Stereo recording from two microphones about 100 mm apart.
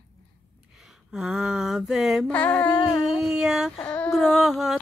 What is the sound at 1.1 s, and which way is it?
Mantra, 5° right (ahead or behind).